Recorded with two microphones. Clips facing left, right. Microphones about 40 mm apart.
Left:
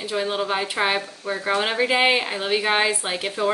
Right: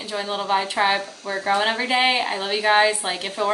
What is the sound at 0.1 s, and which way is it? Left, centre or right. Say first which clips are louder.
A woman's voice: right 1 dB; centre.